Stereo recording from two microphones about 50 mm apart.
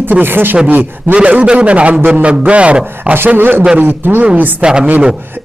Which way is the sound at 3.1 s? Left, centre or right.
Right.